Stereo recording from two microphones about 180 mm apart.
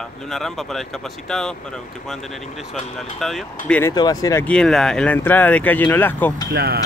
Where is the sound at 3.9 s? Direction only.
20° left (ahead or behind).